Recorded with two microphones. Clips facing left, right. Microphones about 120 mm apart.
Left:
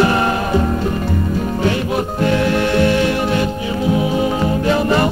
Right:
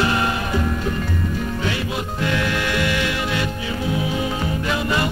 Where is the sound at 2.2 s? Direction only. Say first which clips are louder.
Left 7 dB; 35° left (ahead or behind).